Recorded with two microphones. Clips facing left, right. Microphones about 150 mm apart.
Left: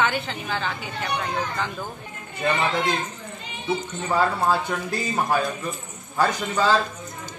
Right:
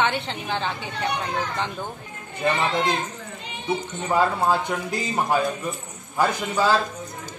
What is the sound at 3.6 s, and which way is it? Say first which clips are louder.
Speech: even; 15° right (ahead or behind).